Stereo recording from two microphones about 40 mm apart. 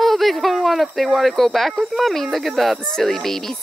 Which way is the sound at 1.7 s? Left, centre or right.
Centre.